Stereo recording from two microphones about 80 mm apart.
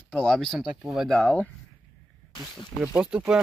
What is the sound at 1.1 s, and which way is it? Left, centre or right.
Speech, centre.